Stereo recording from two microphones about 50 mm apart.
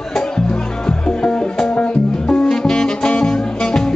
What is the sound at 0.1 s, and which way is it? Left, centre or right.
Music, centre.